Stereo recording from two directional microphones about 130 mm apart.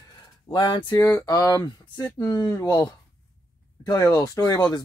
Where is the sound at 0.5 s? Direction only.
40° left (ahead or behind).